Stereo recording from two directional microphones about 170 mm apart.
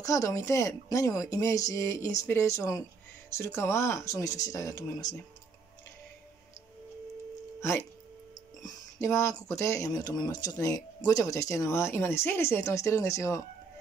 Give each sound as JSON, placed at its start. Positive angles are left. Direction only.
{"t": 0.0, "sound": "speech", "side_deg": 20}
{"t": 8.6, "sound": "speech", "side_deg": 15}